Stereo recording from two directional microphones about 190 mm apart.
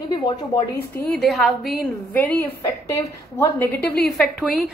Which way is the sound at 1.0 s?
5° left (ahead or behind).